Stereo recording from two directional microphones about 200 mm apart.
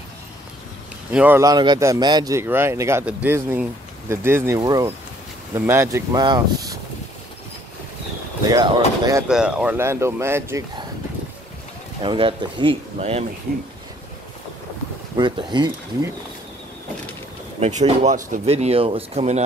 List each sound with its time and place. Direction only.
1.1 s a man's voice: 10° right (ahead or behind)
8.5 s speech: 20° right (ahead or behind)
9.3 s a man's voice: 5° right (ahead or behind)
12.0 s speech: 25° right (ahead or behind)
15.1 s speech: 20° right (ahead or behind)
17.6 s speech: 35° right (ahead or behind)